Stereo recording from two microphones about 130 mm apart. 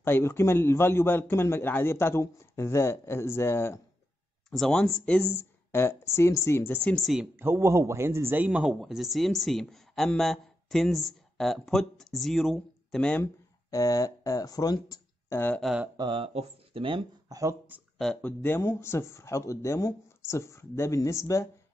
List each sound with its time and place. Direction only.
0.0 s a man's voice: 15° left (ahead or behind)
4.5 s a man's voice: 5° left (ahead or behind)
7.3 s speech: 15° right (ahead or behind); by 13.3 s 10° left (ahead or behind)
13.7 s speech: 25° left (ahead or behind)
15.6 s speech: 5° right (ahead or behind)
16.0 s speech: 40° right (ahead or behind)
17.3 s speech: 25° right (ahead or behind)
17.9 s a man's voice: 5° left (ahead or behind); by 21.5 s 25° left (ahead or behind)